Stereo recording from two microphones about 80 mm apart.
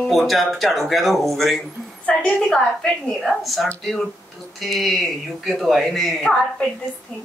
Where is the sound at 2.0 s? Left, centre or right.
Centre.